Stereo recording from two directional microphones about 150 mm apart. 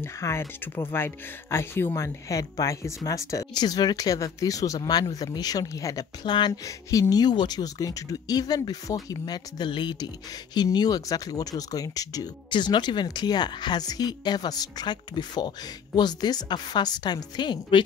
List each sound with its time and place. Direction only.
0.0 s speech: 20° left (ahead or behind)